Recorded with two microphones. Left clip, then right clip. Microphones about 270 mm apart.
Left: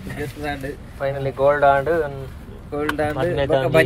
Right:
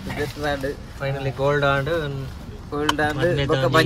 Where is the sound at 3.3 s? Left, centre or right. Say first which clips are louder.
Left 3 dB; centre.